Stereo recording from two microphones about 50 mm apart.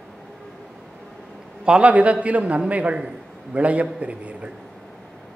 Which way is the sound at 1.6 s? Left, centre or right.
Right.